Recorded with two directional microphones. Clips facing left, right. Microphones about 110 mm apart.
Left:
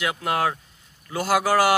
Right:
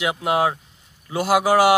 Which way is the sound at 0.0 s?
20° right (ahead or behind).